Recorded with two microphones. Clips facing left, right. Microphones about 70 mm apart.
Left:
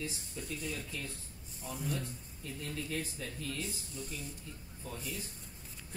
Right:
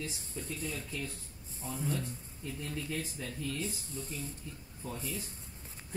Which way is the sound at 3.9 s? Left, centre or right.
Right.